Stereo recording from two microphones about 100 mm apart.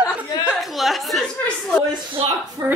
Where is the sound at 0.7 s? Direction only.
Centre (ahead or behind).